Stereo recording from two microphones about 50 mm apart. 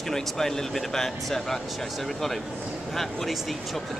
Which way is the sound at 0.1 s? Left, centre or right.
Centre.